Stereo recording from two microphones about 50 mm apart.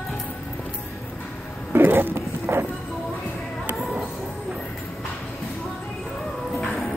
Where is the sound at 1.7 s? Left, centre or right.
Right.